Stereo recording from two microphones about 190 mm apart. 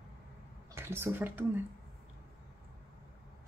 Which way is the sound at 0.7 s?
10° right (ahead or behind).